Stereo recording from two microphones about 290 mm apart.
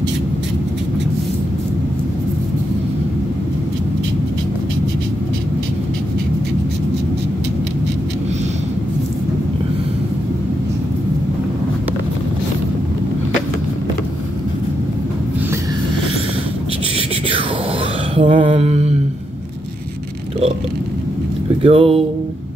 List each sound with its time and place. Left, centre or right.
18.1 s mantra: centre
21.6 s music: centre